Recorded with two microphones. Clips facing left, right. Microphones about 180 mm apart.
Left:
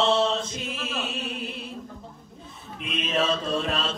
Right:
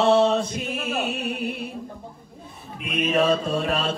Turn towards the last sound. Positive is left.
turn(degrees=-60)  # may be behind; listen again after turning